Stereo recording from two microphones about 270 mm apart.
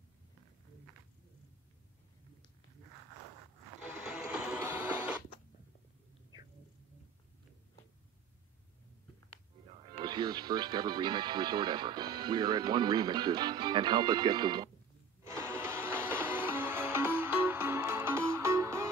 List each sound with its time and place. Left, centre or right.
4.0 s printer: centre
9.9 s speech: centre
15.2 s a sound: centre
16.3 s music: centre